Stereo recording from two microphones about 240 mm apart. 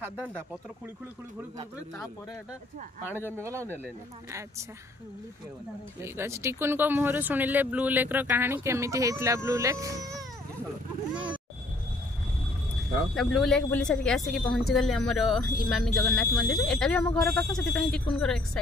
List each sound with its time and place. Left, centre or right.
3.4 s speech: centre
6.0 s speech: centre
13.1 s speech: centre